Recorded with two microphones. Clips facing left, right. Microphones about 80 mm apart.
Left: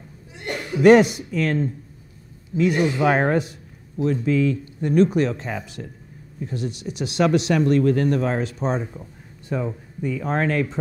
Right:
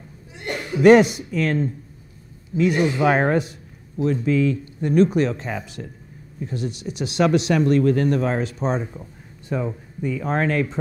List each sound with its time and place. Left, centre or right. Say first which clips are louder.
0.3 s speech: right 1 dB; centre